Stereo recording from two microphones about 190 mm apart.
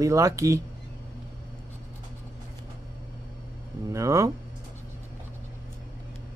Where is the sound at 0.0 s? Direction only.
15° right (ahead or behind).